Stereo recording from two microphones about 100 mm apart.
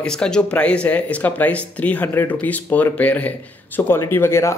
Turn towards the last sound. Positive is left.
turn(degrees=25)  # may be behind; listen again after turning